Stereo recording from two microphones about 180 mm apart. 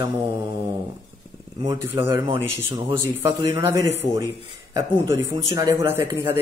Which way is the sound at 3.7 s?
15° right (ahead or behind).